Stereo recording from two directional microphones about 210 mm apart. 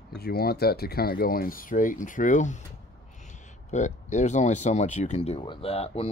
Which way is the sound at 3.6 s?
35° left (ahead or behind).